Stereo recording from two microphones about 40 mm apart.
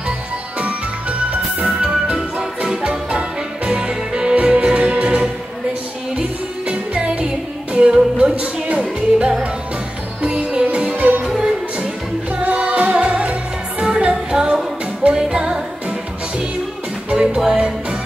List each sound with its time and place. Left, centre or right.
1.6 s music: right
7.0 s music: right
10.2 s music: right
11.2 s music: centre
12.4 s music: right
15.3 s music: centre
17.1 s music: right